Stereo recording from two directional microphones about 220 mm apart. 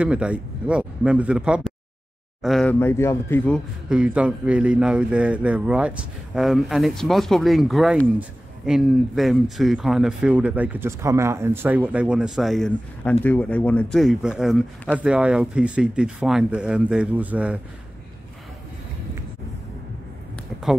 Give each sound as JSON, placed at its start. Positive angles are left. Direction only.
{"t": 0.0, "sound": "a man's voice", "side_deg": -5}
{"t": 3.9, "sound": "a man's voice", "side_deg": -5}